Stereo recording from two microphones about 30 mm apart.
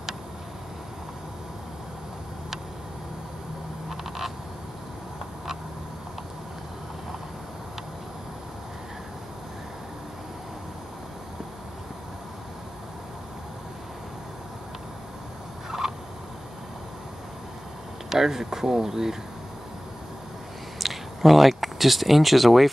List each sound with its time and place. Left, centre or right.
15.8 s turkey: centre
18.1 s speech: centre
20.8 s speech: centre